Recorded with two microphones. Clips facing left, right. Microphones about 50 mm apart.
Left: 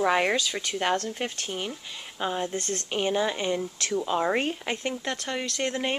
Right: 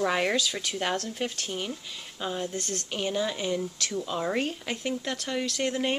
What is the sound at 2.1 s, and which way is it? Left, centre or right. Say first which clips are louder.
Speech: left 3 dB; left.